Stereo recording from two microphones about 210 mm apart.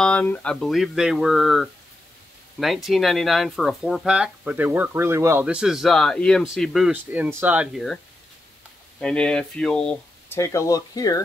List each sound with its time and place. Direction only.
0.0 s speech: 5° left (ahead or behind)
9.0 s speech: 5° left (ahead or behind)